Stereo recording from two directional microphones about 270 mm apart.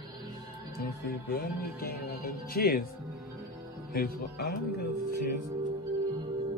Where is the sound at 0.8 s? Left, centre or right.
Left.